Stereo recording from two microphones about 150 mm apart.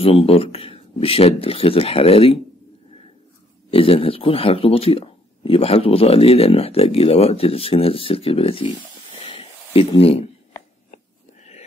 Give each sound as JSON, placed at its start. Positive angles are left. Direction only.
{"t": 0.0, "sound": "a man's voice", "side_deg": 40}
{"t": 3.7, "sound": "a man's voice", "side_deg": 40}